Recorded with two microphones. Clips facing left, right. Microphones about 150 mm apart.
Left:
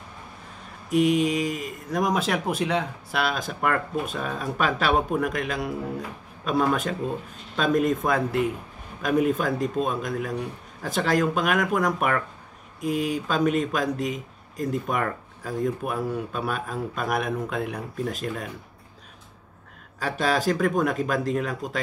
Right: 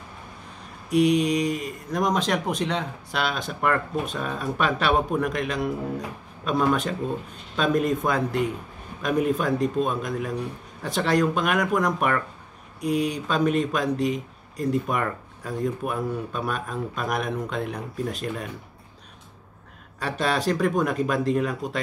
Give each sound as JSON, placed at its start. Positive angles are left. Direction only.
{"t": 0.8, "sound": "speech", "side_deg": 0}
{"t": 20.0, "sound": "speech", "side_deg": 0}